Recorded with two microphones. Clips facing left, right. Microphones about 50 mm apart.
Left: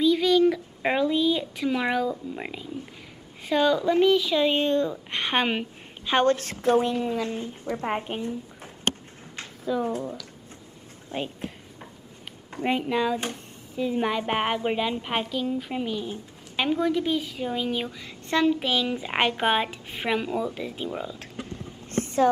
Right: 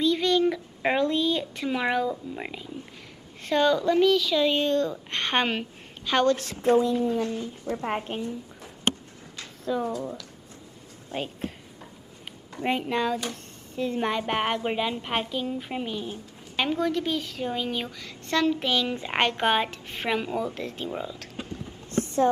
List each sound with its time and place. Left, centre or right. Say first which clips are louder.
0.0 s a sound: left 3 dB; centre
3.4 s a woman's voice: even; centre
3.9 s a woman's voice: left 1 dB; left
5.1 s a woman's voice: left 1 dB; centre
6.2 s speech: even; left
9.4 s a sound: left 3 dB; left
11.1 s speech: left 1 dB; left
12.6 s speech: left 1 dB; centre
16.5 s a woman's voice: left 2 dB; centre
17.9 s speech: left 1 dB; centre
18.5 s speech: left 1 dB; centre
21.8 s vehicle: even; left